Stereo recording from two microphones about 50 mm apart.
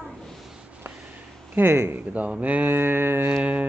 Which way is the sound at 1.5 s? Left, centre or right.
Right.